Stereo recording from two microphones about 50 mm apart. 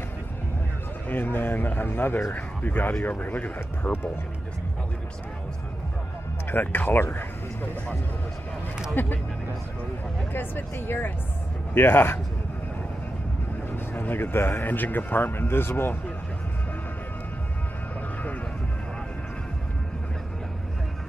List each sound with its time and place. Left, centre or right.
1.0 s speech: left
6.5 s speech: left
9.0 s speech: left
10.3 s speech: left
13.7 s a sound: left
14.6 s speech: left